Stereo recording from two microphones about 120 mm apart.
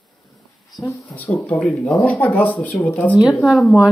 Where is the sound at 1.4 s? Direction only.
20° left (ahead or behind).